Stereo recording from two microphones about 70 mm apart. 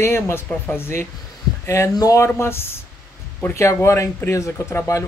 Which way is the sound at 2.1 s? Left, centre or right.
Left.